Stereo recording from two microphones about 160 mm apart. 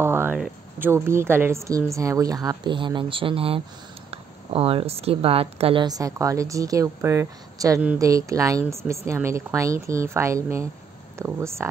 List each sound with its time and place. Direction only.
0.0 s a woman's voice: 15° right (ahead or behind); by 5.9 s 35° right (ahead or behind)
5.9 s a woman's voice: 20° right (ahead or behind)